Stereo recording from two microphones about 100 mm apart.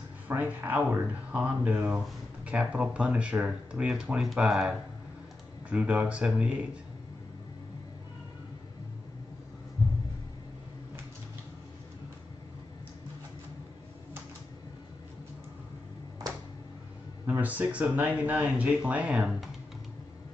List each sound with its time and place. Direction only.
0.3 s speech: 15° right (ahead or behind)
17.3 s speech: 15° right (ahead or behind)